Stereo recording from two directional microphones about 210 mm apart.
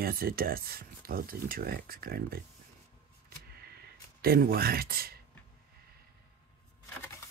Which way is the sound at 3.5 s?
50° right (ahead or behind).